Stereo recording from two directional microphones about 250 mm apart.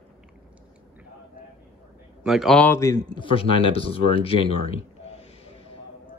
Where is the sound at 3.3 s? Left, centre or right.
Left.